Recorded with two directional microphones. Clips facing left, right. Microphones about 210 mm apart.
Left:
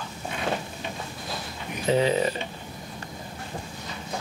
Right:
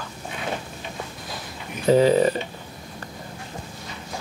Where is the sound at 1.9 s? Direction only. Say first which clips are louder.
Right 6 dB; 40° right (ahead or behind).